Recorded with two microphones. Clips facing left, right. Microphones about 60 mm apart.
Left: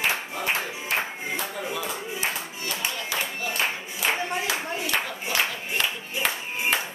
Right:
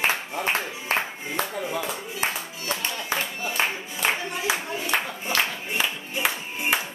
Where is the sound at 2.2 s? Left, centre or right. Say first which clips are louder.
Right 1 dB; right.